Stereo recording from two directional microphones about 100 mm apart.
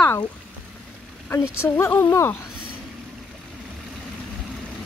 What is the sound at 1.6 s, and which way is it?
Speech, 25° left (ahead or behind).